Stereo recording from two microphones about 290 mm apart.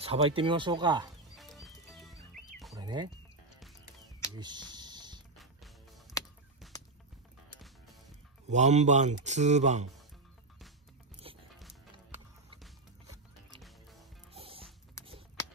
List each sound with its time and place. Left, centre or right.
0.0 s speech: centre
1.3 s music: centre
2.8 s speech: centre
4.4 s a sound: centre
5.4 s music: centre
6.6 s fowl: centre
8.5 s speech: right
11.3 s music: centre
13.5 s music: centre
14.3 s music: centre
15.0 s a sound: centre